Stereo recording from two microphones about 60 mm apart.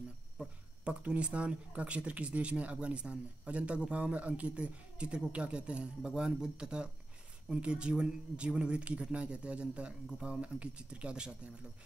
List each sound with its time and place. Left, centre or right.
0.4 s speech: right